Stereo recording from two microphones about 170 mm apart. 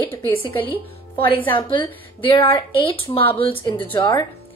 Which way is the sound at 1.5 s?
30° left (ahead or behind).